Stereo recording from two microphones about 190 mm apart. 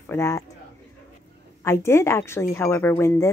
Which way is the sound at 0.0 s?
15° left (ahead or behind).